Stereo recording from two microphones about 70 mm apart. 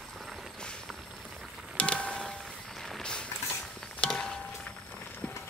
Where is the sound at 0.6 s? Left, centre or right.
Centre.